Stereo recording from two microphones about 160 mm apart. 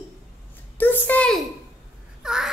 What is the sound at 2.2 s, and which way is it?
Babbling, 5° right (ahead or behind).